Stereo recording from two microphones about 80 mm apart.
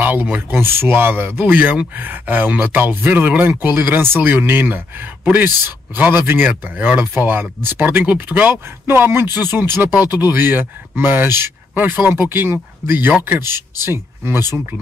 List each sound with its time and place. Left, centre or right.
0.0 s speech: right
8.8 s speech: right
9.8 s speech: left
10.3 s speech: right